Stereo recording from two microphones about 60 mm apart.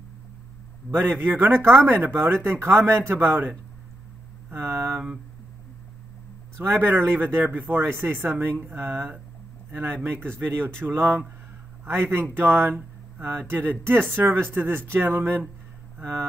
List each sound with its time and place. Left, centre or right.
0.9 s a man's voice: left
1.2 s speech: right
6.6 s speech: right